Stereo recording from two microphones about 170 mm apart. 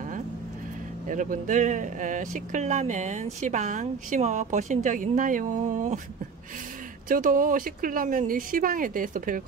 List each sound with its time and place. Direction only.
1.0 s speech: 50° right (ahead or behind)
7.1 s speech: 55° right (ahead or behind)